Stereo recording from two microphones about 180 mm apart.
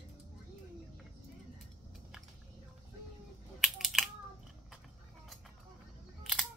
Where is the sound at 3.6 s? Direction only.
Centre (ahead or behind).